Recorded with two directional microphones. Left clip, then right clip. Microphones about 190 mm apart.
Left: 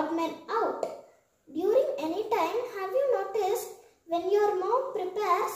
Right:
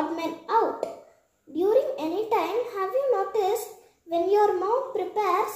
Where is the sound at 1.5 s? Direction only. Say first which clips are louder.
Right 3 dB; 15° right (ahead or behind).